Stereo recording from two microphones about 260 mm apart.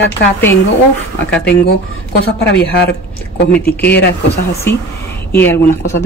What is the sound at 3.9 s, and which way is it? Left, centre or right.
Speech, left.